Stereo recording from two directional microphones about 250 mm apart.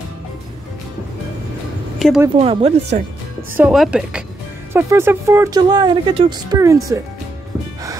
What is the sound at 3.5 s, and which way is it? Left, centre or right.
A woman's voice, centre.